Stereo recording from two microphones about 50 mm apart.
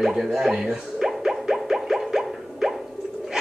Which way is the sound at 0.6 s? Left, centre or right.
Centre.